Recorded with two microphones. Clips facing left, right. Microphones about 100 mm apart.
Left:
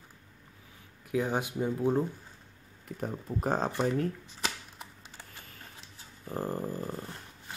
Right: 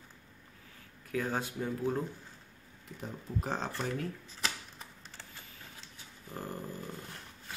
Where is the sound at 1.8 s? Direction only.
30° left (ahead or behind).